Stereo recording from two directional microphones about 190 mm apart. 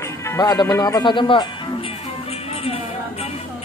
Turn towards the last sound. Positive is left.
turn(degrees=30)  # may be behind; listen again after turning